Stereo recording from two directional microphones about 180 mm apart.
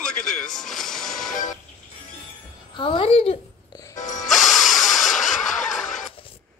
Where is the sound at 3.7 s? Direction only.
20° left (ahead or behind).